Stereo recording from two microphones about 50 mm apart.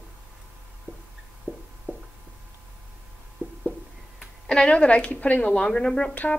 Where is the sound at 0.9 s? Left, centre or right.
Right.